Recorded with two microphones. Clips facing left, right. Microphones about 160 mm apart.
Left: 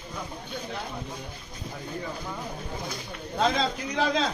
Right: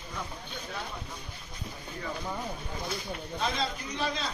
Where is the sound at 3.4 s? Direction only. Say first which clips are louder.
Left 7 dB; 90° left.